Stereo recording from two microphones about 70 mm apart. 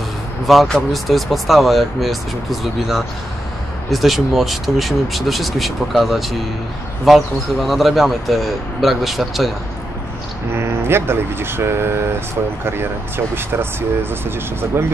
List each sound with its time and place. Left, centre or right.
0.7 s speech: centre
10.5 s speech: right
13.3 s speech: right